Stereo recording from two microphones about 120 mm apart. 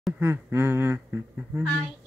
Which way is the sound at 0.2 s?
20° right (ahead or behind).